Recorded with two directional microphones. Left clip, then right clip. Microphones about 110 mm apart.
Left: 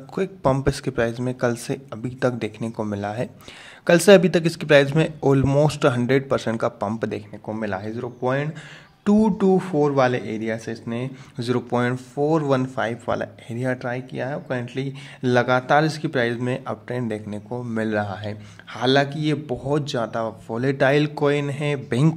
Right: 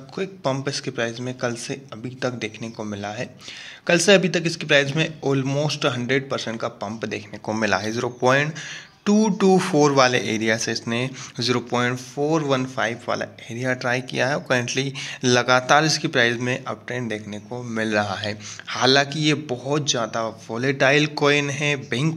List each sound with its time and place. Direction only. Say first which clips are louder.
0.1 s speech: left 4 dB; 90° left; by 2.7 s 70° left (ahead or behind)
2.8 s speech: left 3 dB; 55° left (ahead or behind)
3.8 s speech: left 3 dB; 70° left (ahead or behind)
5.9 s speech: left 2 dB; 65° left (ahead or behind); by 6.5 s 85° left
7.6 s speech: right 7 dB; 5° left (ahead or behind)
9.0 s speech: left 1 dB; 55° left (ahead or behind)
9.5 s speech: right 5 dB; 10° left (ahead or behind)
11.3 s a man's voice: right 1 dB; 30° left (ahead or behind)
11.9 s speech: left 1 dB; 50° left (ahead or behind); by 13.8 s 30° left (ahead or behind)
13.8 s speech: right 6 dB; 10° left (ahead or behind); by 16.3 s 25° left (ahead or behind)
16.4 s speech: right 1 dB; 40° left (ahead or behind)
17.5 s a man's voice: right 1 dB; 25° left (ahead or behind)
19.6 s speech: left 1 dB; 45° left (ahead or behind); by 21.8 s 25° left (ahead or behind)
21.8 s speech: left 2 dB; 50° left (ahead or behind)